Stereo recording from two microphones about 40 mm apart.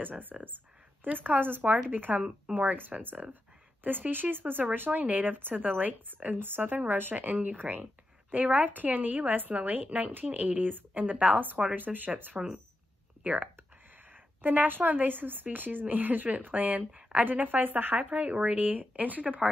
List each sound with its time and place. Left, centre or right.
0.0 s speech: right
17.2 s speech: right
17.9 s speech: right